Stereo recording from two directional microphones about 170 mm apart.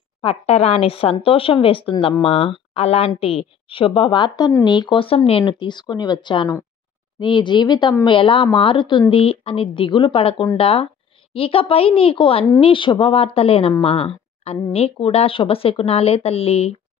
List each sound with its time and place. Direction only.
0.2 s a woman's voice: 35° left (ahead or behind)